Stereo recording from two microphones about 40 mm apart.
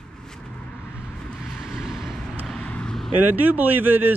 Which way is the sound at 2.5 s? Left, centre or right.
Left.